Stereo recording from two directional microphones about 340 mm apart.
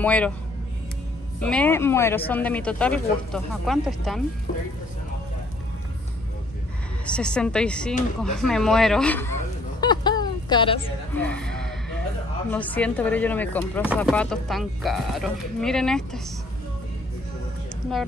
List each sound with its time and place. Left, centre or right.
0.0 s speech: centre
1.4 s speech: centre
7.1 s speech: centre
11.2 s a sound: centre
12.4 s speech: centre